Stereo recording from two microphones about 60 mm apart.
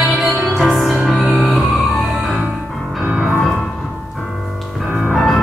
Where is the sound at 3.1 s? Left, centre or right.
Centre.